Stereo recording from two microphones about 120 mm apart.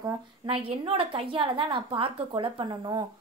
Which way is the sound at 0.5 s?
55° right (ahead or behind).